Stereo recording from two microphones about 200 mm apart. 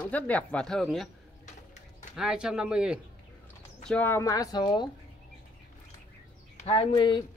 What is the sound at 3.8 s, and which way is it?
Speech, 10° left (ahead or behind).